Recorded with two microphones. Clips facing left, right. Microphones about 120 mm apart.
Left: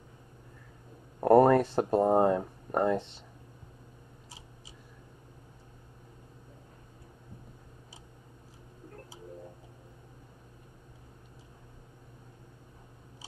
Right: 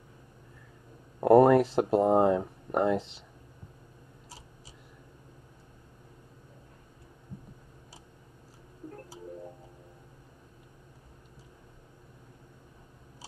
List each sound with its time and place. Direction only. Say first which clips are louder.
1.2 s speech: right 2 dB; 5° right (ahead or behind)